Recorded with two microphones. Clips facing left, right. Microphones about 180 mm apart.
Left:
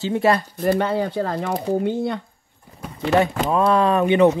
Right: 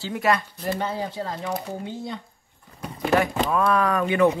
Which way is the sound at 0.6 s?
65° left (ahead or behind).